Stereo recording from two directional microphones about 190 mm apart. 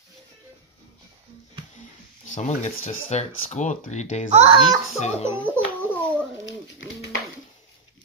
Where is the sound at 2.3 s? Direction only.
40° left (ahead or behind).